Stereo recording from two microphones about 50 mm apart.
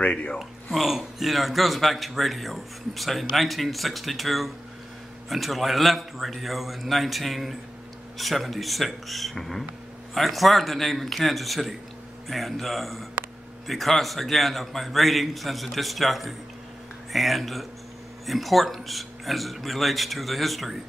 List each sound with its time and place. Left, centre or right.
0.0 s speech: left
0.4 s speech: centre